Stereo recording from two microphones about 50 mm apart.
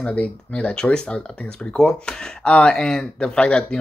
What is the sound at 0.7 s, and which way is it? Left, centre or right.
Speech, centre.